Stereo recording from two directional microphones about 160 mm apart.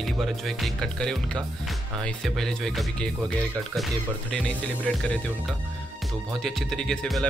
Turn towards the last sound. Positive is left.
turn(degrees=5)  # may be behind; listen again after turning